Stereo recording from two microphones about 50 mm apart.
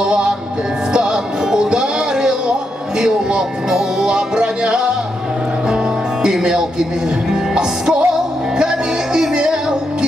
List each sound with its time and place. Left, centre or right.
0.0 s music: centre
6.2 s speech: centre
8.5 s music: centre